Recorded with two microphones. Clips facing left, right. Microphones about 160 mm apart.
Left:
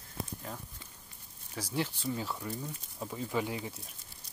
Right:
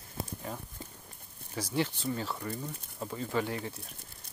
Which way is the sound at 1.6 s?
5° left (ahead or behind).